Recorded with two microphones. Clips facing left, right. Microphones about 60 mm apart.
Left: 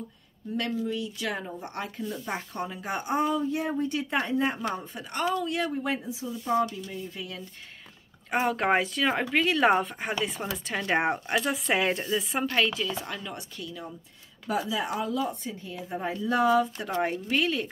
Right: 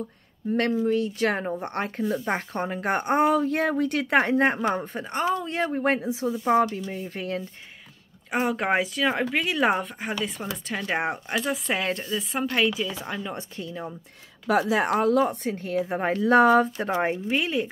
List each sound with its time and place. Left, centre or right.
0.7 s speech: right
5.1 s speech: right
5.8 s speech: right
6.4 s speech: right
8.3 s speech: centre
12.5 s speech: centre
13.4 s speech: right
14.5 s speech: right
17.0 s speech: right